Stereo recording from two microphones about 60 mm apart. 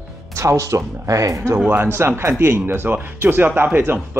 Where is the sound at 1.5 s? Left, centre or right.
Right.